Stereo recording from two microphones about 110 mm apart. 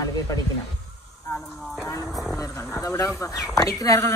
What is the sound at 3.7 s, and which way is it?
Speech, 30° left (ahead or behind).